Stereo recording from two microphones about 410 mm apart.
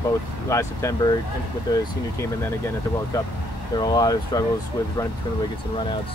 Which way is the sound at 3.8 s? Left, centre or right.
Centre.